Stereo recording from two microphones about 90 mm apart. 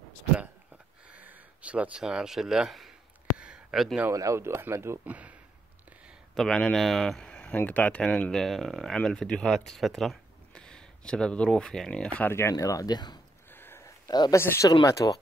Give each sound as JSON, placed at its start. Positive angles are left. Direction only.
{"t": 1.1, "sound": "speech", "side_deg": -15}
{"t": 3.3, "sound": "a sound", "side_deg": -10}
{"t": 4.1, "sound": "speech", "side_deg": -40}
{"t": 4.4, "sound": "speech", "side_deg": -25}
{"t": 5.0, "sound": "speech", "side_deg": -15}
{"t": 6.3, "sound": "speech", "side_deg": 5}
{"t": 12.2, "sound": "speech", "side_deg": 25}
{"t": 13.5, "sound": "a sound", "side_deg": 25}
{"t": 14.0, "sound": "speech", "side_deg": 50}
{"t": 14.3, "sound": "speech", "side_deg": 30}
{"t": 14.7, "sound": "speech", "side_deg": 45}